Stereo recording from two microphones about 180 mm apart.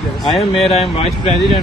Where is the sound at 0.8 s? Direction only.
35° left (ahead or behind).